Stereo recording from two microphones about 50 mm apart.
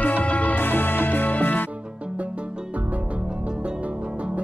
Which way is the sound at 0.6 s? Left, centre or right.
Left.